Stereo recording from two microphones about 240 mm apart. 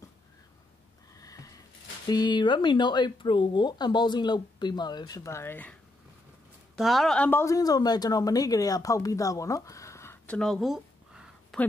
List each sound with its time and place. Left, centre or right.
1.1 s sniff: centre
2.0 s speech: centre
6.8 s a woman's voice: centre